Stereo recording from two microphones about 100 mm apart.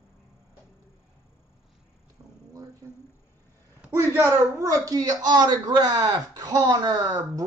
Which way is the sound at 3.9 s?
25° right (ahead or behind).